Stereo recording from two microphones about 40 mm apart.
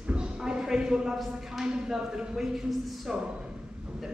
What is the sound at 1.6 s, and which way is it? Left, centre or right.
Speech, centre.